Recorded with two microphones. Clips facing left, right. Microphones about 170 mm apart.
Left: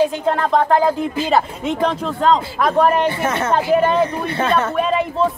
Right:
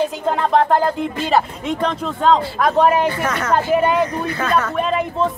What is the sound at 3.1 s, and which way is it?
A man's voice, 25° left (ahead or behind).